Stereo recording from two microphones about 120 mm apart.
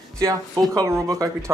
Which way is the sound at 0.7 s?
25° right (ahead or behind).